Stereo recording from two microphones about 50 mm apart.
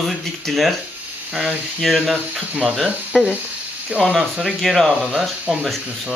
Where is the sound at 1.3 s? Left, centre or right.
Centre.